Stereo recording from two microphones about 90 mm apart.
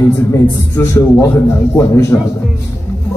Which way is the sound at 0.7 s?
30° left (ahead or behind).